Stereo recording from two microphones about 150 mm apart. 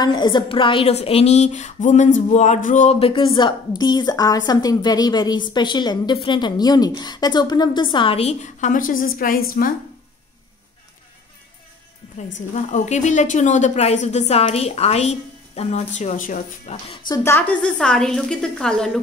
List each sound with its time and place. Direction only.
0.0 s a woman's voice: 30° left (ahead or behind); by 3.0 s 55° left (ahead or behind)
3.0 s a woman's voice: 35° left (ahead or behind); by 9.7 s 75° left (ahead or behind)
12.7 s a woman's voice: 50° left (ahead or behind)
17.1 s a woman's voice: 15° left (ahead or behind)